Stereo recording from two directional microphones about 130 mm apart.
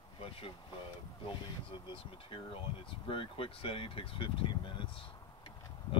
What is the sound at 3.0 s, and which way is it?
Speech, 45° left (ahead or behind).